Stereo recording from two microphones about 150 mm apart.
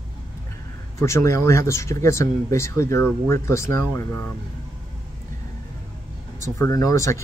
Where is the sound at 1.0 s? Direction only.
20° left (ahead or behind).